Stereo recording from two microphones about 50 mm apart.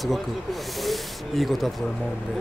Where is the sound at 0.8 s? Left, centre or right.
Centre.